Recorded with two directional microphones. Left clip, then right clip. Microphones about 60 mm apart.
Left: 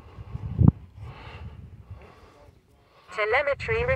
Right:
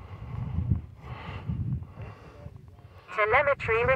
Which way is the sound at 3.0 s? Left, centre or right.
Right.